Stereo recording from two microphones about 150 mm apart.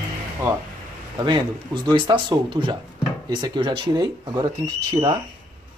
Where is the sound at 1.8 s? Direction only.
30° right (ahead or behind).